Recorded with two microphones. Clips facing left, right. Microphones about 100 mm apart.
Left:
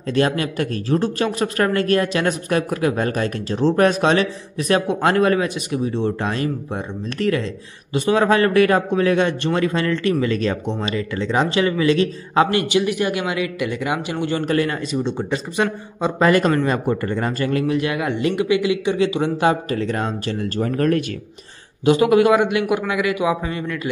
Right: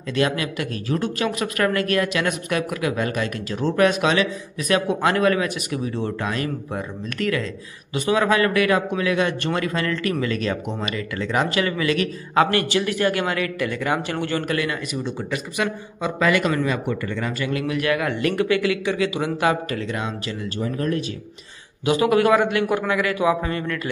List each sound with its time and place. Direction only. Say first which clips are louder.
0.1 s speech: left 3 dB; 35° left (ahead or behind); by 14.4 s 15° left (ahead or behind)
14.4 s speech: left 4 dB; 35° left (ahead or behind)
17.7 s speech: left 1 dB; 25° left (ahead or behind); by 21.0 s 65° left (ahead or behind)
21.8 s speech: left 4 dB; 25° left (ahead or behind)